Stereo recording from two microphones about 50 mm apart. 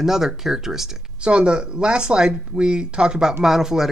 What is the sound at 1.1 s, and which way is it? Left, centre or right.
Speech, right.